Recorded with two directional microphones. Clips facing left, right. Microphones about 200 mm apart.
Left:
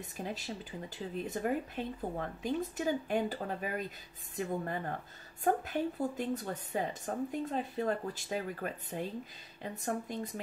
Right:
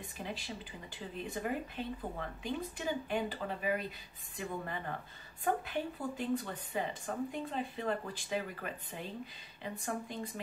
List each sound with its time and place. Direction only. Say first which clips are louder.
0.2 s a woman's voice: left 3 dB; 45° left (ahead or behind)